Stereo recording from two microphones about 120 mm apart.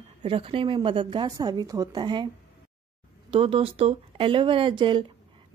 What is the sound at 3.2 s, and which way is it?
A woman's voice, 45° right (ahead or behind).